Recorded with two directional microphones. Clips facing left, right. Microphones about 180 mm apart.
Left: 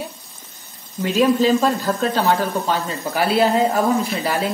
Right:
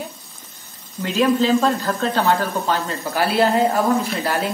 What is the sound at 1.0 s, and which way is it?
Speech, 10° left (ahead or behind).